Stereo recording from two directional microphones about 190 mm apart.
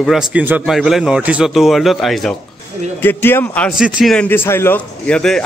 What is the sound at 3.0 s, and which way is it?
A man's voice, 10° left (ahead or behind).